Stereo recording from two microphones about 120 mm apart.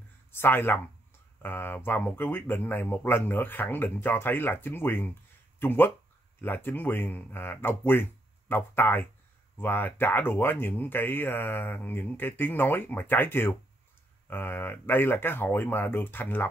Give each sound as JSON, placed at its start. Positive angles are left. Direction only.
{"t": 0.3, "sound": "speech", "side_deg": 20}